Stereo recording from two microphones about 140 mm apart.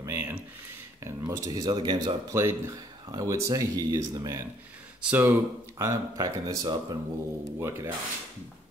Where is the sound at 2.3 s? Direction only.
20° right (ahead or behind).